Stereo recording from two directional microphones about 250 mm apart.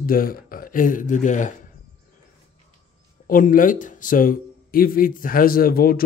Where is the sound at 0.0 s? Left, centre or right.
Left.